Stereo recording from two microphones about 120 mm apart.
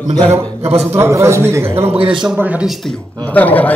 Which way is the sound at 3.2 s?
15° left (ahead or behind).